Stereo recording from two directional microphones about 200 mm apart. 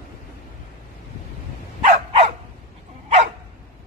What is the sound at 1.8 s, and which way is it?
Dog, 30° right (ahead or behind).